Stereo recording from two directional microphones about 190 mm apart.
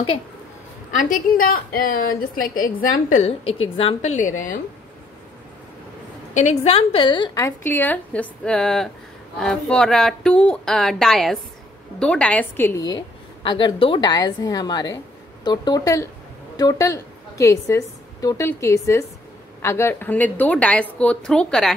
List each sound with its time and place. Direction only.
0.9 s a woman's voice: 45° left (ahead or behind)
6.3 s a woman's voice: 35° left (ahead or behind); by 21.7 s 5° left (ahead or behind)